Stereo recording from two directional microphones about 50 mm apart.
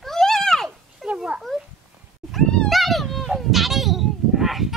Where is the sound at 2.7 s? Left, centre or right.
Centre.